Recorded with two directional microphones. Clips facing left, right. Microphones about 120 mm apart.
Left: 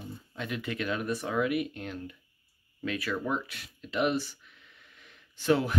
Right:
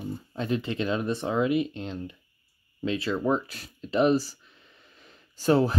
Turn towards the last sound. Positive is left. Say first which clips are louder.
# right 4 dB
turn(degrees=-35)  # may be behind; listen again after turning